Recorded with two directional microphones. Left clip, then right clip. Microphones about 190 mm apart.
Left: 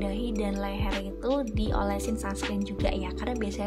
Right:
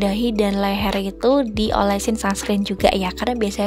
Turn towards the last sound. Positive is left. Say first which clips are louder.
# right 11 dB
turn(degrees=-45)  # may be behind; listen again after turning